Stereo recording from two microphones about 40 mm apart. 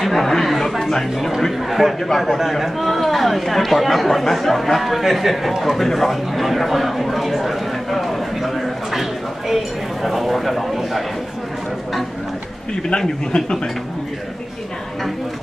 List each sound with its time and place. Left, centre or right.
0.0 s a sound: centre
1.6 s a man's voice: centre
12.9 s speech: centre